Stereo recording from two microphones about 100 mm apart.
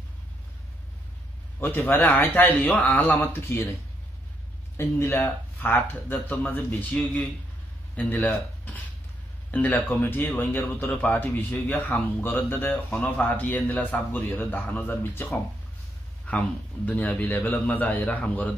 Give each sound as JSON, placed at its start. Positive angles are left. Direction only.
{"t": 1.6, "sound": "a man's voice", "side_deg": 20}
{"t": 4.7, "sound": "a man's voice", "side_deg": 25}